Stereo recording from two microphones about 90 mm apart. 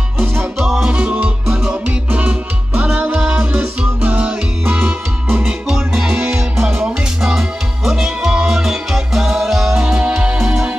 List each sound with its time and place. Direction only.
0.2 s music: 20° right (ahead or behind)
0.6 s music: 5° right (ahead or behind)
2.0 s music: 20° right (ahead or behind)
5.4 s music: 5° right (ahead or behind)